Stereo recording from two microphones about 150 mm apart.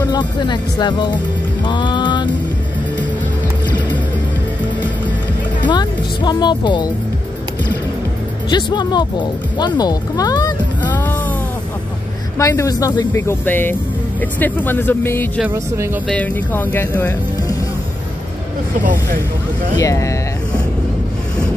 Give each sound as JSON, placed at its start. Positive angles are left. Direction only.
{"t": 0.0, "sound": "speech", "side_deg": 30}
{"t": 5.6, "sound": "speech", "side_deg": 30}
{"t": 8.5, "sound": "speech", "side_deg": 30}
{"t": 12.4, "sound": "speech", "side_deg": 20}
{"t": 15.4, "sound": "speech", "side_deg": -15}
{"t": 16.1, "sound": "speech", "side_deg": 10}
{"t": 19.8, "sound": "speech", "side_deg": 20}